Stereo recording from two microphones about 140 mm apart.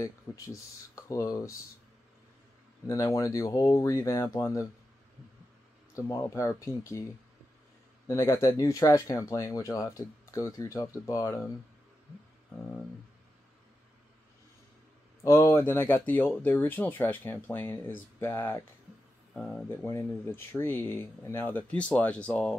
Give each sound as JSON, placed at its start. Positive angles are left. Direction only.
{"t": 1.0, "sound": "speech", "side_deg": 25}
{"t": 2.9, "sound": "speech", "side_deg": 25}
{"t": 5.9, "sound": "speech", "side_deg": 25}
{"t": 8.1, "sound": "speech", "side_deg": 20}
{"t": 15.2, "sound": "speech", "side_deg": 20}
{"t": 19.3, "sound": "speech", "side_deg": 5}
{"t": 19.7, "sound": "speech", "side_deg": 20}